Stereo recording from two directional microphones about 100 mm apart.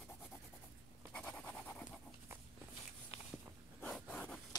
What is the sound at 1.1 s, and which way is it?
Scratch, 10° left (ahead or behind).